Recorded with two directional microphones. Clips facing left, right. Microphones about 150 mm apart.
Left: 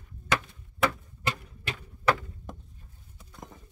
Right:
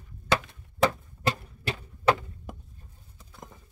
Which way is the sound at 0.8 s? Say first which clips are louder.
Right 3 dB; 30° right (ahead or behind).